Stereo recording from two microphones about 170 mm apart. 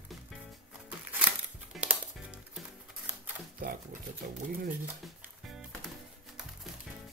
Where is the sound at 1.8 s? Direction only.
5° right (ahead or behind).